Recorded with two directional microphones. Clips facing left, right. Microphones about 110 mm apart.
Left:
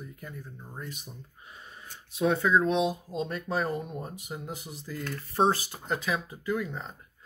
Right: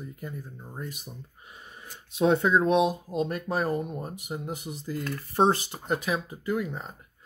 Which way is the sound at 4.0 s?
10° right (ahead or behind).